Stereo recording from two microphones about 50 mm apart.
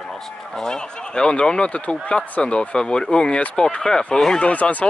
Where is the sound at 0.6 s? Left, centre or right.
Centre.